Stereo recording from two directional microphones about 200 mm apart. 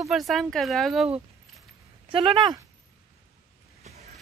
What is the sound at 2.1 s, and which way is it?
Speech, 25° right (ahead or behind).